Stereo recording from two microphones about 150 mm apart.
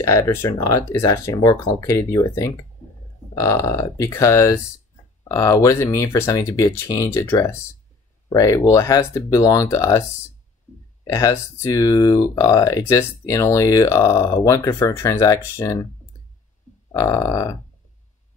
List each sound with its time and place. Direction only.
0.0 s speech: 20° left (ahead or behind)
10.7 s a sound: 15° left (ahead or behind)
11.1 s speech: 20° left (ahead or behind)
16.9 s speech: 20° left (ahead or behind)